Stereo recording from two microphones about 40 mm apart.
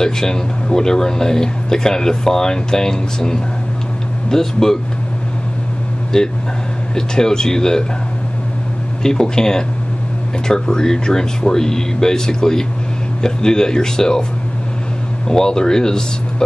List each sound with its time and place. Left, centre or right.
0.0 s speech: centre
6.1 s speech: centre
9.0 s speech: centre
15.2 s speech: centre